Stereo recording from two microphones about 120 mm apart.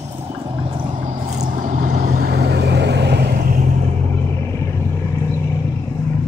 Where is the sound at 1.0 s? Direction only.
85° right.